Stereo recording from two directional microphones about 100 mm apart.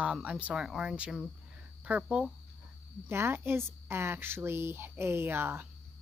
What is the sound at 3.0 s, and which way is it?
Speech, 25° right (ahead or behind).